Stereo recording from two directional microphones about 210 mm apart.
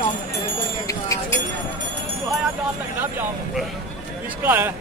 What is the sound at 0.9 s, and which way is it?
Chink, 15° left (ahead or behind).